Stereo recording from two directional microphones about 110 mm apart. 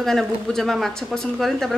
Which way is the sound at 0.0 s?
5° left (ahead or behind).